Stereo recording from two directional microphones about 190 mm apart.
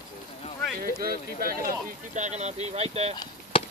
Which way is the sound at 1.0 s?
50° right (ahead or behind).